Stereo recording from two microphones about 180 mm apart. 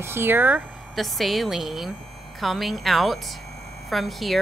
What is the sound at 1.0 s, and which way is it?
Speech, centre (ahead or behind).